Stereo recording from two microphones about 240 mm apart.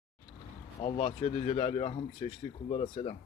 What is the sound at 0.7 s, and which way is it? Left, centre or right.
Speech, left.